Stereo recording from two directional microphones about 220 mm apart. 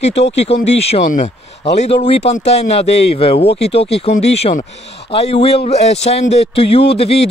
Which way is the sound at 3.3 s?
50° left (ahead or behind).